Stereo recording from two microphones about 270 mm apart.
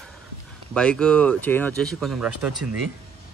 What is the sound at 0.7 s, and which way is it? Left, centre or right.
Speech, centre.